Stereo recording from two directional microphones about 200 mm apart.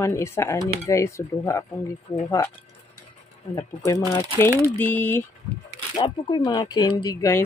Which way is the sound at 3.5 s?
15° left (ahead or behind).